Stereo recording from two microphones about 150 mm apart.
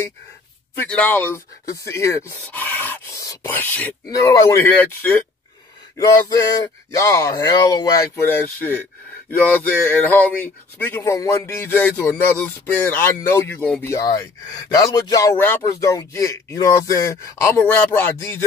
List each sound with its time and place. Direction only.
0.7 s speech: 10° left (ahead or behind)